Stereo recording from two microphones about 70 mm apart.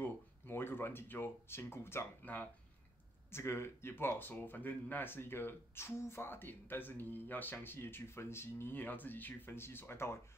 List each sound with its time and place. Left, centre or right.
0.0 s speech: left